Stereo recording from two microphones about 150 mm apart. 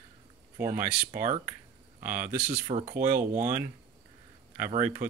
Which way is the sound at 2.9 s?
65° right (ahead or behind).